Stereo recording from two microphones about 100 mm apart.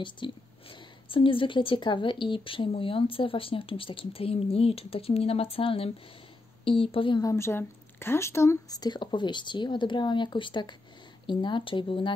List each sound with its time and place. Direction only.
0.0 s a woman's voice: 55° left (ahead or behind)
7.2 s a woman's voice: 30° left (ahead or behind)
8.7 s a woman's voice: 45° left (ahead or behind)